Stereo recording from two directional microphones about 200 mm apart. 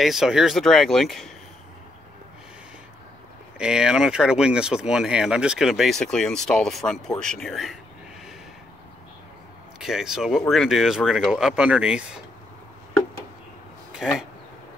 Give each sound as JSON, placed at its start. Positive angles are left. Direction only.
{"t": 0.0, "sound": "speech", "side_deg": 0}
{"t": 3.5, "sound": "speech", "side_deg": -5}
{"t": 9.8, "sound": "speech", "side_deg": 0}
{"t": 14.0, "sound": "speech", "side_deg": -5}